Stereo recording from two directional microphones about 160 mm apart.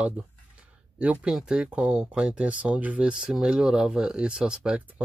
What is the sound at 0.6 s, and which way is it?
Speech, 10° right (ahead or behind).